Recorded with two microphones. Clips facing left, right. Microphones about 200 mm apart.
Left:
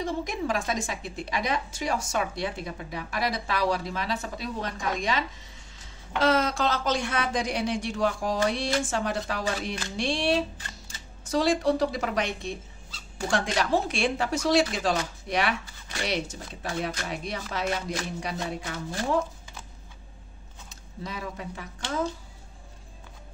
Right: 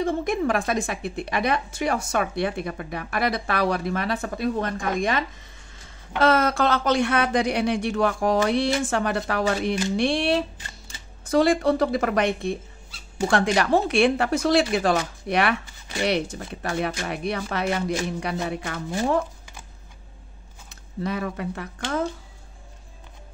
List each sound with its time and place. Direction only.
0.0 s a woman's voice: 55° right (ahead or behind)
21.0 s a woman's voice: 60° right (ahead or behind)